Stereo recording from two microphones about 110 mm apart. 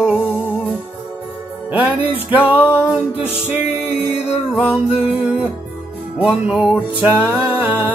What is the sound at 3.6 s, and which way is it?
Music, 65° left (ahead or behind).